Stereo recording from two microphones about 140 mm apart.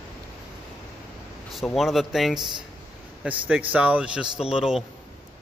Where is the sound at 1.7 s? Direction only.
Centre (ahead or behind).